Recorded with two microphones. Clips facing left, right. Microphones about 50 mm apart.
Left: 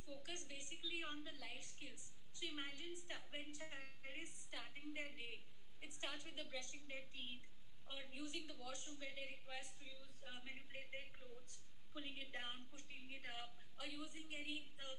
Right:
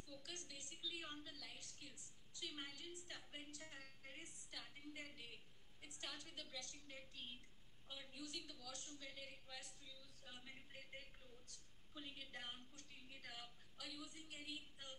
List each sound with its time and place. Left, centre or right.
0.0 s a woman's voice: left